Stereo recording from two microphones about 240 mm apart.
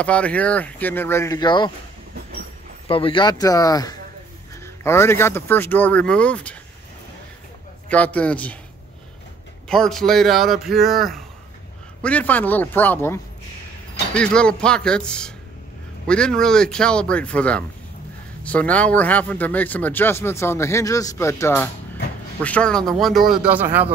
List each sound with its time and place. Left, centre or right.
0.0 s speech: centre
2.9 s speech: left; by 6.6 s centre
7.9 s speech: centre
9.7 s speech: centre